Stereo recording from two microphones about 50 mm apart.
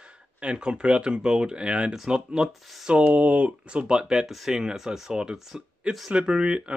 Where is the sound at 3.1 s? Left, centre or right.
Right.